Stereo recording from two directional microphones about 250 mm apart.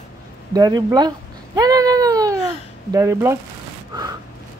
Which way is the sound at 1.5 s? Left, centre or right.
Centre.